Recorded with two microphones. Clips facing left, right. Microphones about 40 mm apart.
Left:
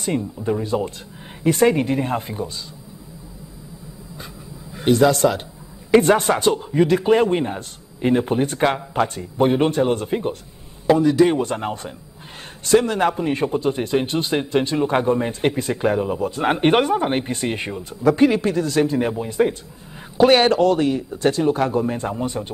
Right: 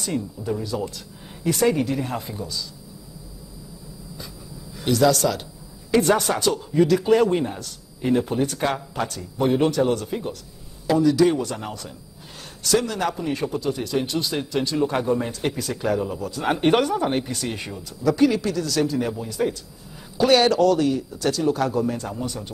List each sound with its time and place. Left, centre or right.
0.0 s a man's voice: left
4.7 s a man's voice: left